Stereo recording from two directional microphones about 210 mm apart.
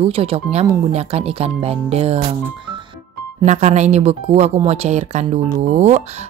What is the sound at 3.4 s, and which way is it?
Speech, 35° right (ahead or behind).